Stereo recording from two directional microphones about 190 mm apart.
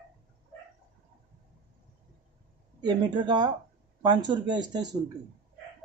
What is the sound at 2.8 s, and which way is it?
Speech, 20° right (ahead or behind).